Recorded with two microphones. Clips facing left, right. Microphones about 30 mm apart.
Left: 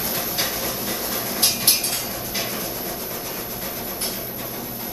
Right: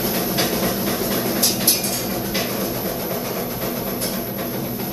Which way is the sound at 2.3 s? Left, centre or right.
Centre.